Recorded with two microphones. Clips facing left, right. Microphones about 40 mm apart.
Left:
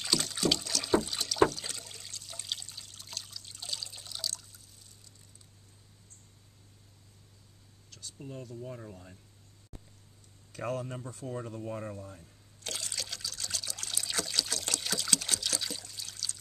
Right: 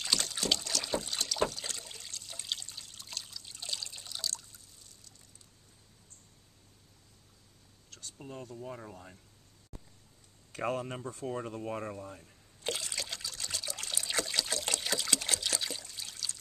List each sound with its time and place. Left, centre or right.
0.0 s boat: centre
8.2 s speech: centre
10.5 s speech: right
12.8 s trickle: centre